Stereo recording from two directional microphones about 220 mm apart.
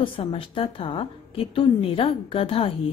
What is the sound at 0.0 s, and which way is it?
A woman's voice, 25° left (ahead or behind).